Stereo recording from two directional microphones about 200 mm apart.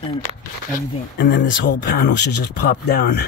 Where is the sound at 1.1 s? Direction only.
60° left (ahead or behind).